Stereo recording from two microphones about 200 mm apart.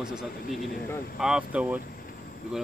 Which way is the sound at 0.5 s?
45° left (ahead or behind).